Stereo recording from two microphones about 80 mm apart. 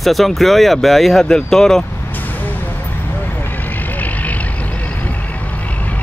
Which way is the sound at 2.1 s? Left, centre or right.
Left.